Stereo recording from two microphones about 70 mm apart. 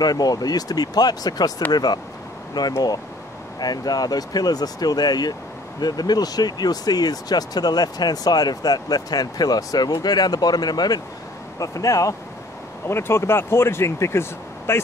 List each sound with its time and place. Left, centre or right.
0.0 s speech: left
1.7 s speech: left
11.6 s speech: left
12.8 s speech: left